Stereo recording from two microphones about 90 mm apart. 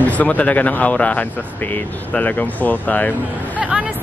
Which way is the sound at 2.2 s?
15° left (ahead or behind).